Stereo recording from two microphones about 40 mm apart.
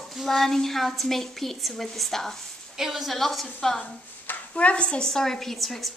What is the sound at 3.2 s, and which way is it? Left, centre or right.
Speech, centre.